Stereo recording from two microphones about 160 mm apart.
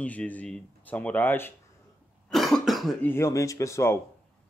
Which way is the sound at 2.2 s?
Centre (ahead or behind).